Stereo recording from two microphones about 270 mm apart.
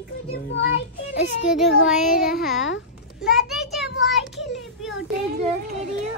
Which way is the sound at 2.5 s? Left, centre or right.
Left.